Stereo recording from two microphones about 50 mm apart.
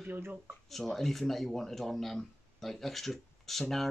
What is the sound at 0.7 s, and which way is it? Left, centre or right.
Speech, centre.